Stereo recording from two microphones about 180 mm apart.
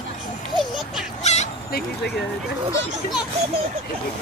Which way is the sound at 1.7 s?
60° left (ahead or behind).